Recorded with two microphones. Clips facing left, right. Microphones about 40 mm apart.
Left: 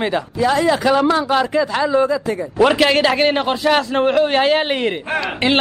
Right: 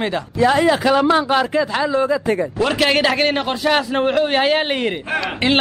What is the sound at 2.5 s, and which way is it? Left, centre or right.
Speech, centre.